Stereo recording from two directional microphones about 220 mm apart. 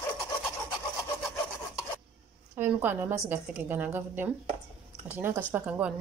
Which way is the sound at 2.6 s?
10° right (ahead or behind).